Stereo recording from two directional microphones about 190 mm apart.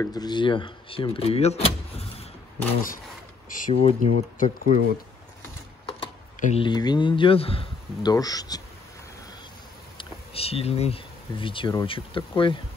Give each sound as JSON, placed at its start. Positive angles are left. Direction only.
{"t": 0.0, "sound": "speech", "side_deg": 20}
{"t": 3.4, "sound": "speech", "side_deg": 45}
{"t": 6.4, "sound": "speech", "side_deg": 30}
{"t": 9.9, "sound": "speech", "side_deg": 30}